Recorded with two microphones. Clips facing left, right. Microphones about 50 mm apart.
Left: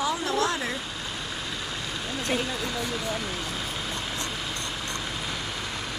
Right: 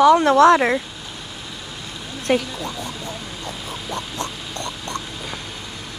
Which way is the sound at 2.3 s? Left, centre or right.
Right.